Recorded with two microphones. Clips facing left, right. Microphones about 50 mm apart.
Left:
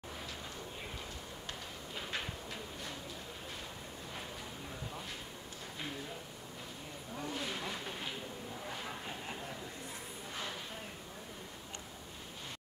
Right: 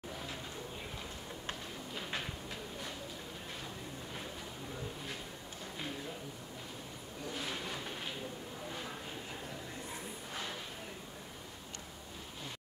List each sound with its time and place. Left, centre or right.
7.3 s vehicle: centre